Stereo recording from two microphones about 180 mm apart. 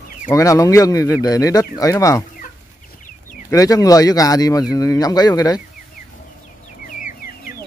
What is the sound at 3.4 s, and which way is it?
Speech, 20° left (ahead or behind).